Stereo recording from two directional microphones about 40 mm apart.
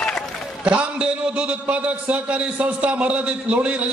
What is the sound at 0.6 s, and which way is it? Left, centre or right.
A man's voice, right.